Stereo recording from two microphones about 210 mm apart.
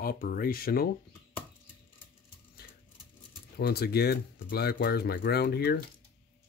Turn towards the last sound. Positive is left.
turn(degrees=50)  # may be behind; listen again after turning